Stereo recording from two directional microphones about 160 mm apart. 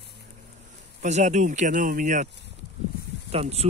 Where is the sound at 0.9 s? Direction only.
45° right (ahead or behind).